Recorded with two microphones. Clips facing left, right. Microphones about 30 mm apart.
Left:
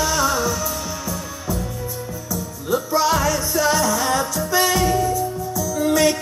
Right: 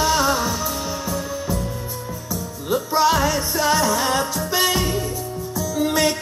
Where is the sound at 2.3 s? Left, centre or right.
Right.